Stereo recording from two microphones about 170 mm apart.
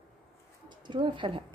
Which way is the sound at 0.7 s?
25° right (ahead or behind).